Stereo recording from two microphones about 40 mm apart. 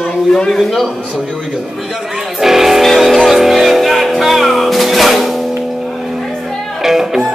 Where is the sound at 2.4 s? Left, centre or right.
Centre.